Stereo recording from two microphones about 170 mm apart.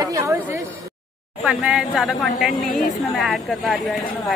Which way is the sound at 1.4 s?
5° right (ahead or behind).